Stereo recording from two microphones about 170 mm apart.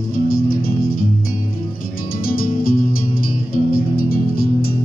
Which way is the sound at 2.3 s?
60° left (ahead or behind).